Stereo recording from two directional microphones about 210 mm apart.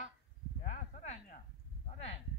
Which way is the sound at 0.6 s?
35° left (ahead or behind).